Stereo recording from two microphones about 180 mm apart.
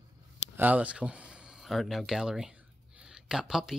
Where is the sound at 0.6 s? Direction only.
10° right (ahead or behind).